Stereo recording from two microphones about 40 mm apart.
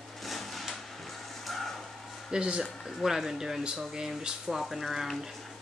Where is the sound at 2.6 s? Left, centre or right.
Centre.